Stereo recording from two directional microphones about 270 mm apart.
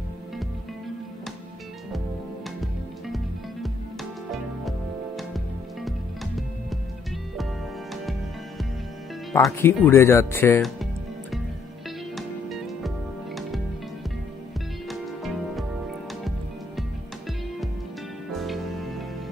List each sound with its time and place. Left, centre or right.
4.3 s music: centre
7.9 s music: centre
9.3 s speech: centre
12.2 s music: centre
14.9 s music: centre
18.3 s music: centre